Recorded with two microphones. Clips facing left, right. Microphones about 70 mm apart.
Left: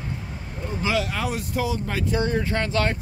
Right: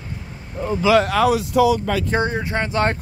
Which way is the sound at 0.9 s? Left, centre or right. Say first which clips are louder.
Right 10 dB; right.